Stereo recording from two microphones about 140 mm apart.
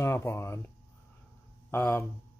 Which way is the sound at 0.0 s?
20° left (ahead or behind).